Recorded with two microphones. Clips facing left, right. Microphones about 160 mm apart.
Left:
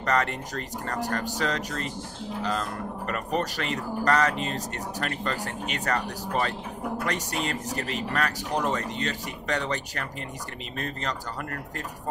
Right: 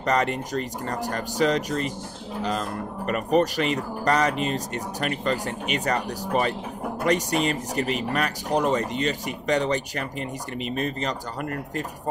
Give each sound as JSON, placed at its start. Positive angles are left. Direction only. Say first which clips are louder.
{"t": 0.0, "sound": "speech", "louder": "right 3 dB", "side_deg": -15}
{"t": 3.1, "sound": "speech", "louder": "right 8 dB", "side_deg": -15}